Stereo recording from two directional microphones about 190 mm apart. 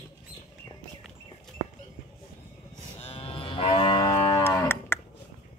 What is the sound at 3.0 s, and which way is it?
Livestock, 30° left (ahead or behind).